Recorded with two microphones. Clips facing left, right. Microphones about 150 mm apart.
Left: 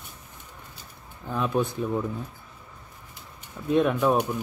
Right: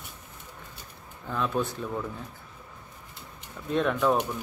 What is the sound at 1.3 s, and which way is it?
Speech, 15° left (ahead or behind).